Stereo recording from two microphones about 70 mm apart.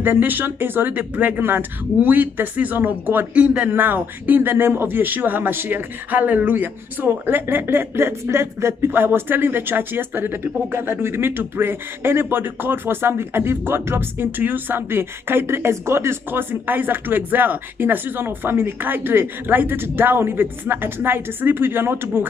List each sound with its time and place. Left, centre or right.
0.0 s speech: right